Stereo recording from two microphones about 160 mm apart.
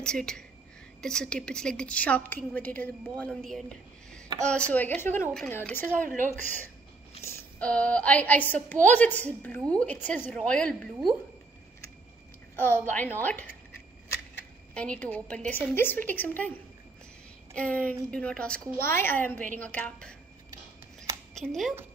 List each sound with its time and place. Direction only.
0.0 s a woman's voice: 5° left (ahead or behind)
5.9 s speech: 55° right (ahead or behind)
7.2 s a woman's voice: 10° left (ahead or behind)
12.8 s a woman's voice: 10° left (ahead or behind)
14.7 s a woman's voice: 5° left (ahead or behind)
17.6 s a woman's voice: 10° left (ahead or behind)
21.4 s a woman's voice: centre (ahead or behind)